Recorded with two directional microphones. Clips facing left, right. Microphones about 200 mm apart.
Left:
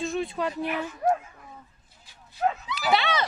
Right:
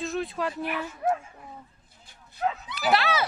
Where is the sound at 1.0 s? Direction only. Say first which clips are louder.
Left 2 dB; 40° left (ahead or behind).